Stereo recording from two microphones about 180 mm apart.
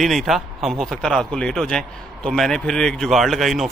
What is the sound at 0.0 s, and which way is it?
Speech, centre (ahead or behind).